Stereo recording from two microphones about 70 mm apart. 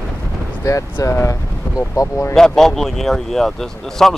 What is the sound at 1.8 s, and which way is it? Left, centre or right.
Speech, left.